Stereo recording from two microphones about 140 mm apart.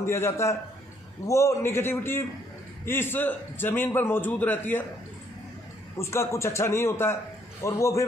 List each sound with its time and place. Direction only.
0.0 s a man's voice: 20° left (ahead or behind)
5.9 s a man's voice: 20° left (ahead or behind)